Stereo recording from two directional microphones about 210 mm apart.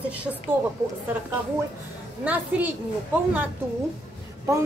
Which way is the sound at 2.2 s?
5° right (ahead or behind).